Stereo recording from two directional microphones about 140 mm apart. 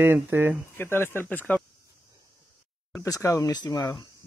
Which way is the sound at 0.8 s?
15° left (ahead or behind).